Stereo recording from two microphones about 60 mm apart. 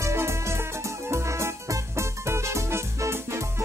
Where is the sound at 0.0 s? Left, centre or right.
Right.